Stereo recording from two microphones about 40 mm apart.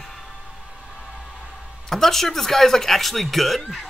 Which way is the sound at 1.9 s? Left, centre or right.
Centre.